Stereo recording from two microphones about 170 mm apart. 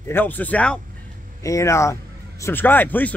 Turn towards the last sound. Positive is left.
turn(degrees=10)  # may be behind; listen again after turning